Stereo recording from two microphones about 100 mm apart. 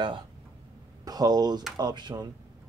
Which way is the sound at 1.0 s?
40° right (ahead or behind).